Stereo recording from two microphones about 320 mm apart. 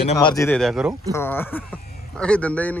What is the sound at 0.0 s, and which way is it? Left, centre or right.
Speech, centre.